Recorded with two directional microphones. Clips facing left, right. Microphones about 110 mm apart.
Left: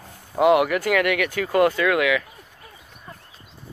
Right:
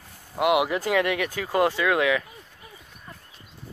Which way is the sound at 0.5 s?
15° right (ahead or behind).